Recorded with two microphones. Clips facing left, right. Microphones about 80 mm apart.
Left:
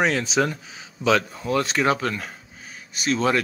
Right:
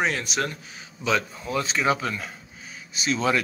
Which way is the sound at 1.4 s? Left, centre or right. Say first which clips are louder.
Left 3 dB; left.